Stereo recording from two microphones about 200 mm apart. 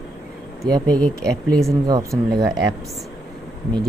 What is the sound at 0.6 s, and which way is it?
Speech, 20° right (ahead or behind).